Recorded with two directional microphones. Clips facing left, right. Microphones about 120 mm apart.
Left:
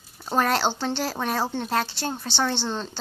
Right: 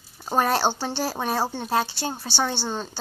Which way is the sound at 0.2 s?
15° right (ahead or behind).